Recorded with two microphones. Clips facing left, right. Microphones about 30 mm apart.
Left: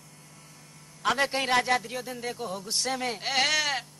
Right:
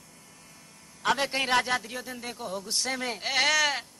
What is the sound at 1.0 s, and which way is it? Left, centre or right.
Speech, centre.